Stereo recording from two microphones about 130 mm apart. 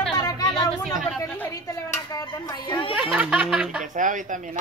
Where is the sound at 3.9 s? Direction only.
80° right.